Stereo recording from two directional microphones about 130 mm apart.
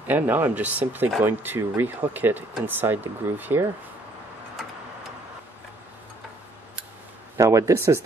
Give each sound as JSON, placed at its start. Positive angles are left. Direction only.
{"t": 0.0, "sound": "speech", "side_deg": -15}
{"t": 7.3, "sound": "speech", "side_deg": -25}